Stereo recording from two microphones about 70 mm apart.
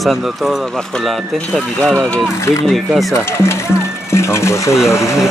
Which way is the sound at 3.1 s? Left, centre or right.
Left.